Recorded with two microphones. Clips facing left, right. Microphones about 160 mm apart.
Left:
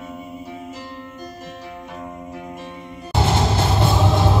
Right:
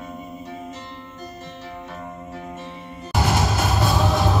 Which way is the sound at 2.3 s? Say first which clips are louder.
Left 1 dB; 15° left (ahead or behind).